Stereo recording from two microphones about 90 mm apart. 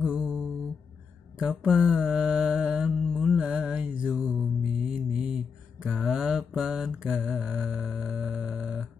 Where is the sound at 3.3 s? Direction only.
15° right (ahead or behind).